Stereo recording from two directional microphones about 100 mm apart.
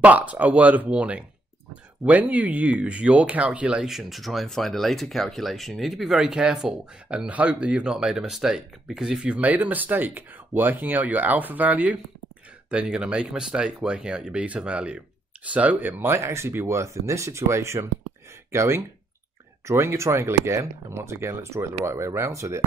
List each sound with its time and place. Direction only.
0.0 s speech: 15° right (ahead or behind)